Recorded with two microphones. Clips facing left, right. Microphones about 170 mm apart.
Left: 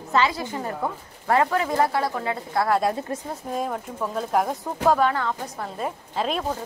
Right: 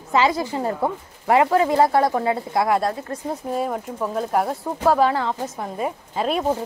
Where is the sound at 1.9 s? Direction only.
45° right (ahead or behind).